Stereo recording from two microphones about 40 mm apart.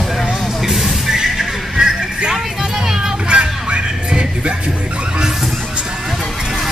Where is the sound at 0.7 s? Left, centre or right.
Centre; by 4.6 s right.